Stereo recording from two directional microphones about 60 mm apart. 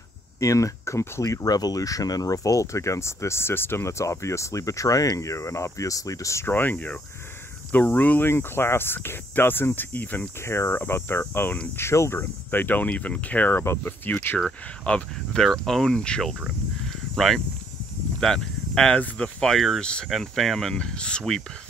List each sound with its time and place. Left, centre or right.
0.4 s speech: left
4.0 s speech: left
6.4 s speech: left
8.3 s speech: left
10.4 s speech: left
10.7 s speech: left
12.4 s speech: left
13.6 s speech: left
14.4 s speech: centre
16.8 s a sound: centre
18.2 s speech: centre
20.1 s speech: centre